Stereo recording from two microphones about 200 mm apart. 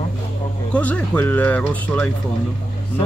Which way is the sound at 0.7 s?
10° left (ahead or behind).